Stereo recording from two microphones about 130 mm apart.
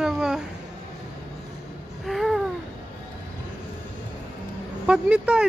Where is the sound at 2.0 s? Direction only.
Centre (ahead or behind).